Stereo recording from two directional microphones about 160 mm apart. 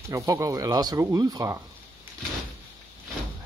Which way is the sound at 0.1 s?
20° right (ahead or behind).